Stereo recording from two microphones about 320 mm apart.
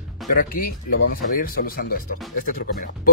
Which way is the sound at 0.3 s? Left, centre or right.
Left.